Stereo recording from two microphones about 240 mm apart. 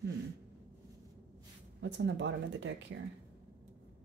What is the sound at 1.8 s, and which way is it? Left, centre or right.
Speech, right.